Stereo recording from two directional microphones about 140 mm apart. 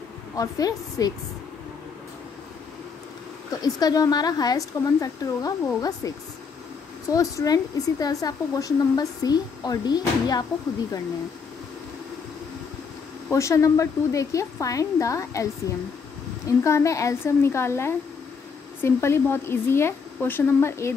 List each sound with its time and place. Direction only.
0.4 s speech: 25° left (ahead or behind)
3.6 s speech: 25° left (ahead or behind)
13.3 s a woman's voice: 20° left (ahead or behind)